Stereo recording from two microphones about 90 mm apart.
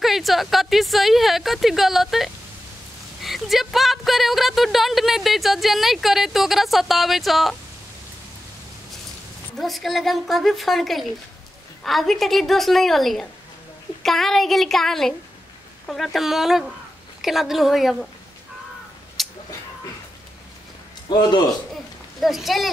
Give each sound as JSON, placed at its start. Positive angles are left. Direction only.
{"t": 0.0, "sound": "speech", "side_deg": 0}
{"t": 9.6, "sound": "speech", "side_deg": 0}
{"t": 19.2, "sound": "a sound", "side_deg": 0}
{"t": 21.1, "sound": "a man's voice", "side_deg": 50}
{"t": 22.2, "sound": "speech", "side_deg": 0}